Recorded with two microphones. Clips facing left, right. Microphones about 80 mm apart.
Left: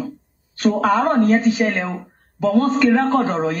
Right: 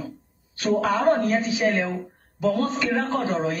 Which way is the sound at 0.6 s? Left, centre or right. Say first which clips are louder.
Left 5 dB; left.